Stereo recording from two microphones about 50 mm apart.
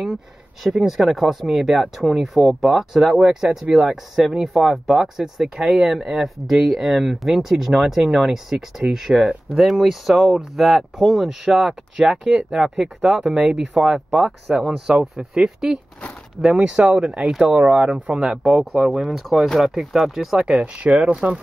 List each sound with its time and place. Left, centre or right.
0.8 s speech: centre
17.5 s speech: right
18.1 s speech: centre
20.4 s speech: centre